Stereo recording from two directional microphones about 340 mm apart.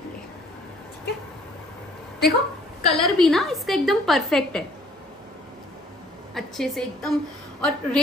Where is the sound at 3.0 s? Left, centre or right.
Centre.